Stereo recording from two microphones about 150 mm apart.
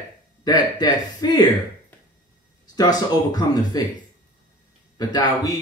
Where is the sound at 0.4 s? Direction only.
25° left (ahead or behind).